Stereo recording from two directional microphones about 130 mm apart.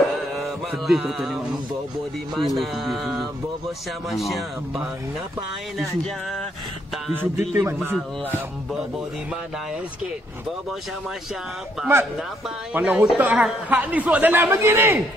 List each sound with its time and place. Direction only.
0.4 s mantra: centre (ahead or behind)
2.3 s speech: centre (ahead or behind)
7.2 s a man's voice: 15° right (ahead or behind)
12.7 s a man's voice: 10° right (ahead or behind)